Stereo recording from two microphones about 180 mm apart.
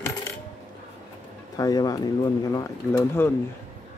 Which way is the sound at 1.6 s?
20° left (ahead or behind).